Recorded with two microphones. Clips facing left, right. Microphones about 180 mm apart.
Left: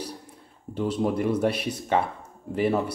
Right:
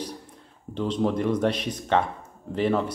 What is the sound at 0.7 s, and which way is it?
Speech, 10° left (ahead or behind).